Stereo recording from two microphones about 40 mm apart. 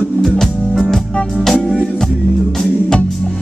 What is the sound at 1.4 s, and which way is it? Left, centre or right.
Music, centre.